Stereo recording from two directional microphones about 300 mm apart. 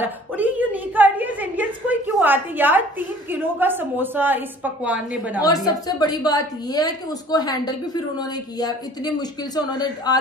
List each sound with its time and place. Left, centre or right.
0.0 s a sound: centre
3.3 s a woman's voice: centre
5.9 s a woman's voice: centre